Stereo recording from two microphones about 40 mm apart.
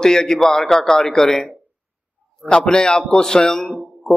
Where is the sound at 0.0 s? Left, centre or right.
Centre.